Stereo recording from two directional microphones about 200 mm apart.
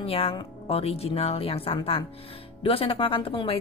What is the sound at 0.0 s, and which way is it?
A woman's voice, 30° left (ahead or behind).